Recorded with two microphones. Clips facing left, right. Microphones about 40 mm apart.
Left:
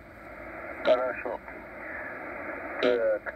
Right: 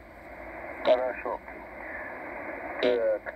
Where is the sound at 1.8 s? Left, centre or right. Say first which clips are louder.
Left 1 dB; centre.